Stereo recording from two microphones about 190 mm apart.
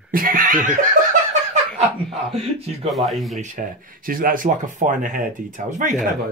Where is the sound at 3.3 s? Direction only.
40° right (ahead or behind).